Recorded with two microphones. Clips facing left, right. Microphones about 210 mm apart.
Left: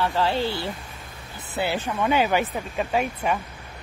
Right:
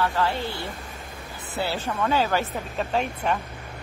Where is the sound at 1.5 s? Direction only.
20° left (ahead or behind).